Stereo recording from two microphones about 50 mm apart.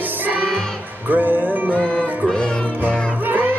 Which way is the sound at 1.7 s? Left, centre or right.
Left.